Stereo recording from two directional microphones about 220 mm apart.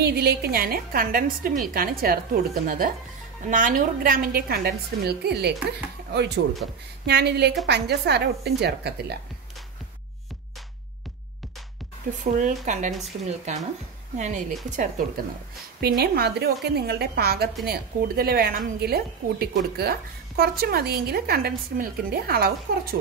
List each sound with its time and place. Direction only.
0.0 s a woman's voice: 45° right (ahead or behind)
12.2 s a woman's voice: 35° right (ahead or behind)
14.1 s a woman's voice: 35° right (ahead or behind)